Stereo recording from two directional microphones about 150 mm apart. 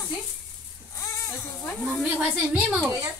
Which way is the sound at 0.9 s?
20° left (ahead or behind).